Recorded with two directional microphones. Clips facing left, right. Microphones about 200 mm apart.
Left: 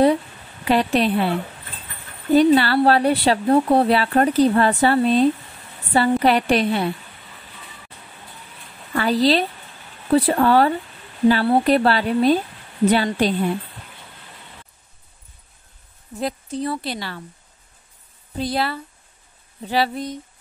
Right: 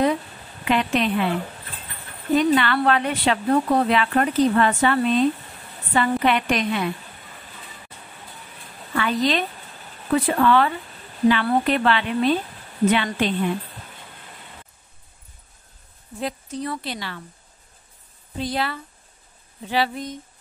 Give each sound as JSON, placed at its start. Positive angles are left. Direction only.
{"t": 0.7, "sound": "speech", "side_deg": 35}
{"t": 2.3, "sound": "speech", "side_deg": 35}
{"t": 8.9, "sound": "speech", "side_deg": 35}
{"t": 16.2, "sound": "speech", "side_deg": 35}
{"t": 18.4, "sound": "speech", "side_deg": 35}